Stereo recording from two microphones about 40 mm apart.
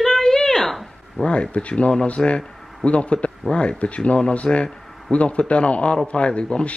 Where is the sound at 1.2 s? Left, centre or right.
Left.